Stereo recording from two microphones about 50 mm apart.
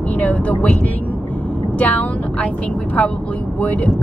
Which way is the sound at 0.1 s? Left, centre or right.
Left.